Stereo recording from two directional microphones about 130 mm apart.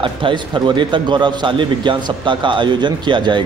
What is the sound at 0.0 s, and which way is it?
Speech, 40° right (ahead or behind).